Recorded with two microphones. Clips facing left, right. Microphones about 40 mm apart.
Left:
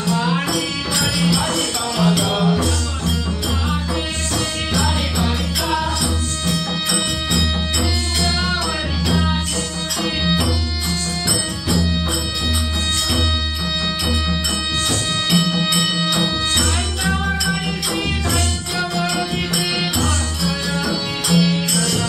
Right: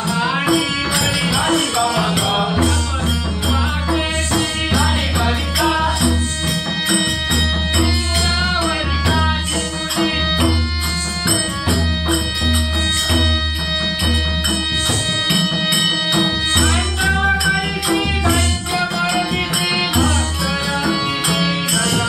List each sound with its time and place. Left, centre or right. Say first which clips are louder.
0.1 s music: right 3 dB; centre
3.9 s music: right 4 dB; centre
9.0 s music: even; right
15.3 s music: left 2 dB; centre